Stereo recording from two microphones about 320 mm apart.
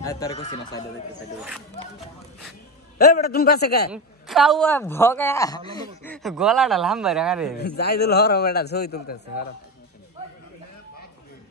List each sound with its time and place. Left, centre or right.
0.0 s a woman's voice: centre
3.0 s a man's voice: left
3.9 s a woman's voice: centre
7.5 s a man's voice: left